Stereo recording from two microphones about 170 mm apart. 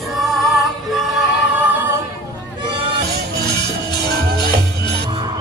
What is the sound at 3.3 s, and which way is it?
Music, 25° left (ahead or behind).